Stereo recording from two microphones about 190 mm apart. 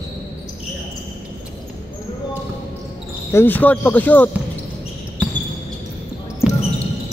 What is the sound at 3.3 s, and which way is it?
Speech, 10° left (ahead or behind).